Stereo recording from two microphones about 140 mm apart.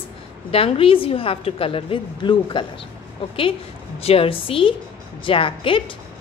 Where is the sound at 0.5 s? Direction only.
45° left (ahead or behind).